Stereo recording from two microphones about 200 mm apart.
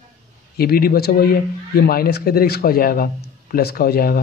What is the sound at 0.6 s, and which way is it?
A man's voice, 50° left (ahead or behind).